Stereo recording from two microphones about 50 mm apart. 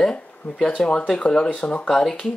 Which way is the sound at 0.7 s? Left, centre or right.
Left.